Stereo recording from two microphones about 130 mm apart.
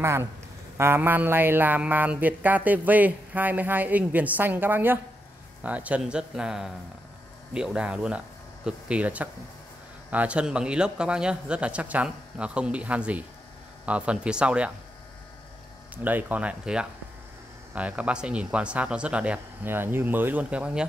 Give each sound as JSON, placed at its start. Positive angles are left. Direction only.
{"t": 0.0, "sound": "a man's voice", "side_deg": -20}
{"t": 16.0, "sound": "speech", "side_deg": -15}